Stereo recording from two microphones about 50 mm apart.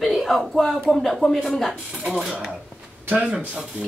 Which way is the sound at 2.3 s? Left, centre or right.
Centre.